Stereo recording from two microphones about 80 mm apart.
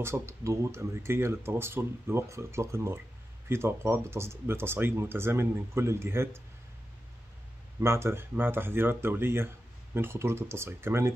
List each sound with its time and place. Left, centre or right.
0.0 s speech: right
7.8 s speech: right